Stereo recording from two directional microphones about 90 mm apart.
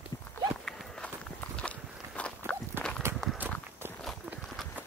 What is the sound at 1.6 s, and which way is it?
Walk, 15° left (ahead or behind).